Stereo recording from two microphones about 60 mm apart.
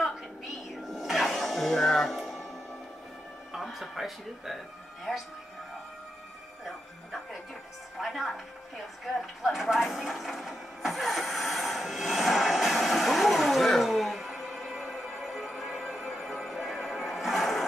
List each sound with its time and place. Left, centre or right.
0.8 s music: centre
3.5 s a woman's voice: centre
8.0 s a woman's voice: centre
9.0 s vehicle: centre